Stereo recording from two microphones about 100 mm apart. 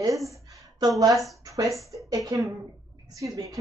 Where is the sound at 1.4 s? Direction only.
35° right (ahead or behind).